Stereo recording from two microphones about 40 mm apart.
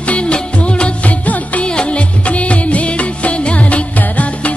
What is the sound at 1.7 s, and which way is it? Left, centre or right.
Music, left.